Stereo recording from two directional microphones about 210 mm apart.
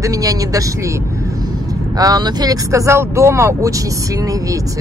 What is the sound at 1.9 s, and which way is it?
Speech, 20° right (ahead or behind).